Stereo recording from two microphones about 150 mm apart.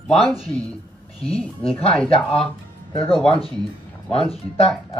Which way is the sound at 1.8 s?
5° left (ahead or behind).